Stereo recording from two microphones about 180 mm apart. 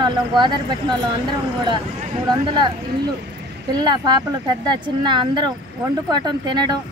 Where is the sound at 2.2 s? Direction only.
25° right (ahead or behind).